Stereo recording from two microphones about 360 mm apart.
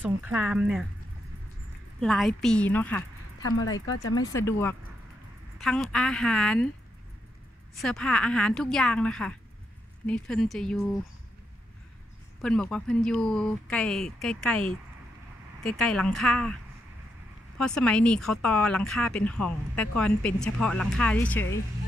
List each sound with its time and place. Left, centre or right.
0.0 s speech: centre
2.0 s a woman's voice: centre
3.4 s speech: left
4.1 s speech: centre
7.8 s speech: centre
12.4 s speech: centre
17.6 s speech: centre